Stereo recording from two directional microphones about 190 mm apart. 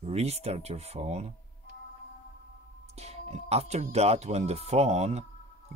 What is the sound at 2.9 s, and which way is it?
Speech, 35° right (ahead or behind).